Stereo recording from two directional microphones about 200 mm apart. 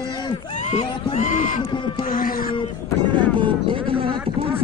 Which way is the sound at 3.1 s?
25° right (ahead or behind).